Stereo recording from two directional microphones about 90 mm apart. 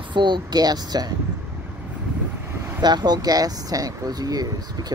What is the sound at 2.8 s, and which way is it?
Speech, 50° right (ahead or behind).